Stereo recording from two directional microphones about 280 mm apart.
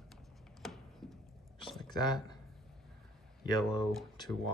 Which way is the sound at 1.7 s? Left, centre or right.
Centre.